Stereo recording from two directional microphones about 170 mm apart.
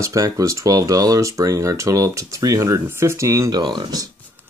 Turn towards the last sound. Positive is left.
turn(degrees=-25)  # may be behind; listen again after turning